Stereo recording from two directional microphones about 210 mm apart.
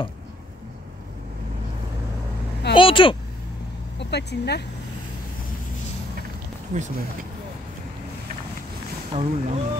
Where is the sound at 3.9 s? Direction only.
55° left (ahead or behind).